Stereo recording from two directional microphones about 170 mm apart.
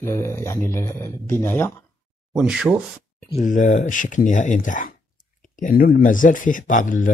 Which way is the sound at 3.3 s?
50° left (ahead or behind).